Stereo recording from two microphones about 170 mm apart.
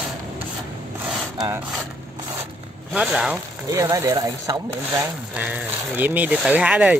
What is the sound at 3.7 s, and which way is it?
Speech, 20° right (ahead or behind).